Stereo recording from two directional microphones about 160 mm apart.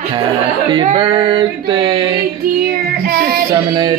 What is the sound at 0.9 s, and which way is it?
Female singing, 30° right (ahead or behind).